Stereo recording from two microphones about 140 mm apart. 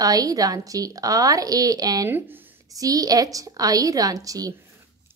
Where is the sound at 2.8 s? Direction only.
25° right (ahead or behind).